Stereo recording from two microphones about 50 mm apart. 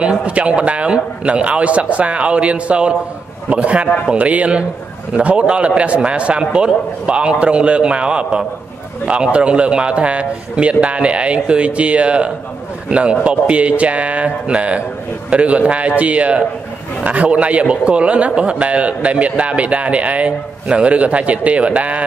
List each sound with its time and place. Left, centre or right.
0.0 s a man's voice: right